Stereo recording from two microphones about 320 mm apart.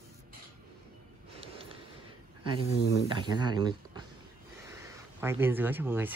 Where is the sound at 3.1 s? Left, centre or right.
Centre.